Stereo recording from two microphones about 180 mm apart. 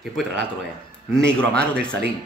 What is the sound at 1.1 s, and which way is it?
Speech, 5° left (ahead or behind).